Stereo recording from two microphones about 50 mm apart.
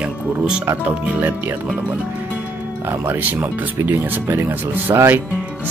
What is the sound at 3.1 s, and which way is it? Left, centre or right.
Speech, right.